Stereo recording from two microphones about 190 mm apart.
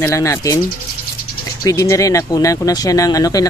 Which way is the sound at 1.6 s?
15° left (ahead or behind).